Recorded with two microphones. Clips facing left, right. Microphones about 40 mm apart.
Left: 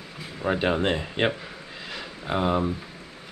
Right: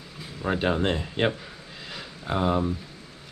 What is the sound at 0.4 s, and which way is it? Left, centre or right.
Speech, centre.